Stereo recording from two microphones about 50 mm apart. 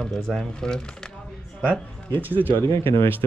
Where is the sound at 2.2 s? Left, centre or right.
Right.